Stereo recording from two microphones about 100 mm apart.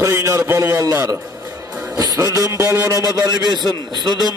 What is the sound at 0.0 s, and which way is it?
A man's voice, 30° right (ahead or behind).